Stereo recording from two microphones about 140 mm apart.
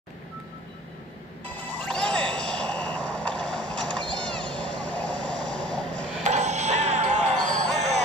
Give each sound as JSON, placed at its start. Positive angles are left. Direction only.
{"t": 1.4, "sound": "music", "side_deg": 10}
{"t": 6.2, "sound": "music", "side_deg": -55}